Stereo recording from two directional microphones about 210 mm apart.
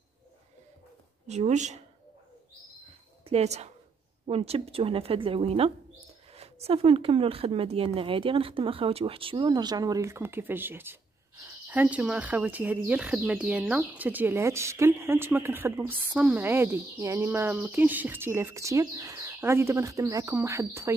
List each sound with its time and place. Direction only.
1.2 s speech: 35° right (ahead or behind)
3.3 s speech: 30° right (ahead or behind); by 20.9 s 15° right (ahead or behind)